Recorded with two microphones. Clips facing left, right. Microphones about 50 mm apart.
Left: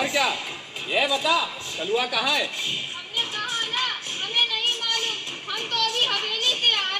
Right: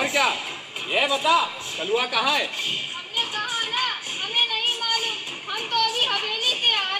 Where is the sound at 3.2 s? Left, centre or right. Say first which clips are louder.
Right 1 dB; centre.